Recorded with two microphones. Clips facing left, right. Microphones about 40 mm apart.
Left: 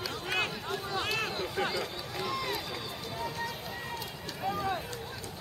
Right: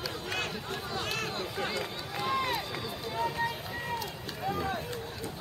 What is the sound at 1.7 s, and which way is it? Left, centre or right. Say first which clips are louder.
Run: even; centre.